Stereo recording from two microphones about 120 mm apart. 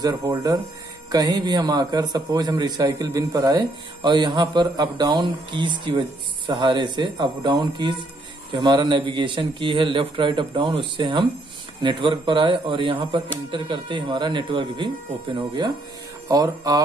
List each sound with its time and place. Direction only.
0.0 s speech: 30° right (ahead or behind)
3.5 s a man's voice: 40° right (ahead or behind)